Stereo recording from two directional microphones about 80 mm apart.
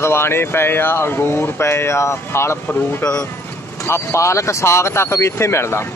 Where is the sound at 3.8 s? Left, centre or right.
Left.